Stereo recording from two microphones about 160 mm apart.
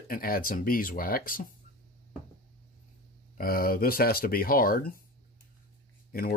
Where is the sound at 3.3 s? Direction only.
65° left (ahead or behind).